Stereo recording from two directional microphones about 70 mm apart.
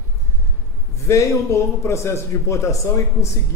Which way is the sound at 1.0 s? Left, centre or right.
Left.